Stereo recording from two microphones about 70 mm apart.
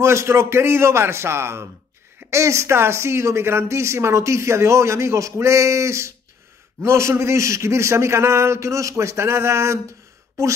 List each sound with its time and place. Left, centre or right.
0.0 s a man's voice: right